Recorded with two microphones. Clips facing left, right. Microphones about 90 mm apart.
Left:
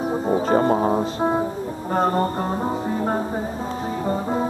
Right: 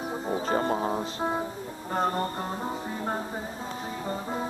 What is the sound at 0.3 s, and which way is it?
Music, 40° left (ahead or behind).